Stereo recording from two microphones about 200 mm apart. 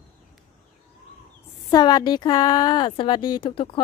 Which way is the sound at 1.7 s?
20° left (ahead or behind).